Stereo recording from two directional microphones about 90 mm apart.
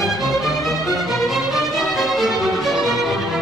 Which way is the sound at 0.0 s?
Centre (ahead or behind).